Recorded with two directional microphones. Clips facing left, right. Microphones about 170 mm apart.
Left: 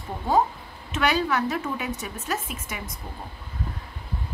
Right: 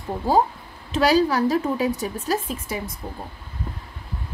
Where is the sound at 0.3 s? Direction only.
35° right (ahead or behind).